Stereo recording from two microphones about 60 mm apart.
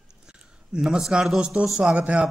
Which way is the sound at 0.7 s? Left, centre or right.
Centre.